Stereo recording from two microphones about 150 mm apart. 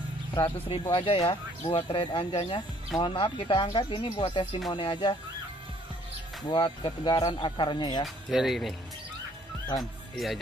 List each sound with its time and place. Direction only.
0.3 s speech: 30° left (ahead or behind)
6.5 s speech: 35° left (ahead or behind)
8.3 s speech: centre (ahead or behind)
9.8 s speech: centre (ahead or behind)